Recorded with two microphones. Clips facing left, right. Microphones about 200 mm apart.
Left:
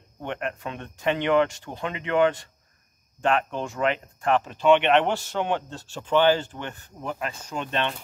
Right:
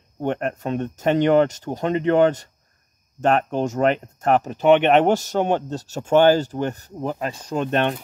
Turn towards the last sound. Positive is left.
turn(degrees=-50)  # may be behind; listen again after turning